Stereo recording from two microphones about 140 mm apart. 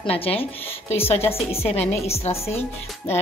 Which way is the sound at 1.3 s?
45° left (ahead or behind).